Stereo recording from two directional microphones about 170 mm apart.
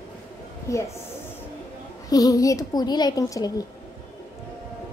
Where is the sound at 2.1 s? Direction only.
20° left (ahead or behind).